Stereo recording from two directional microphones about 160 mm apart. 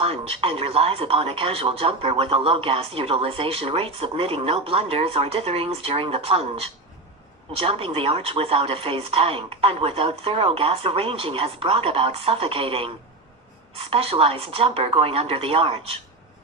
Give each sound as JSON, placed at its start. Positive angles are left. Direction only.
{"t": 0.0, "sound": "speech", "side_deg": -35}